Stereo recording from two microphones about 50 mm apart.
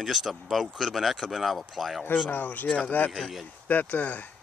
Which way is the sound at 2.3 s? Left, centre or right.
Left.